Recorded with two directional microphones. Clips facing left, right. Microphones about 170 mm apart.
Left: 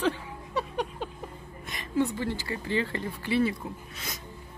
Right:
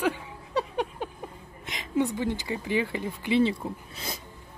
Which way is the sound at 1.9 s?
15° right (ahead or behind).